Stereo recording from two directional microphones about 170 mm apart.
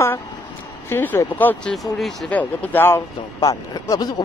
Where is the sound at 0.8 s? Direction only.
15° left (ahead or behind).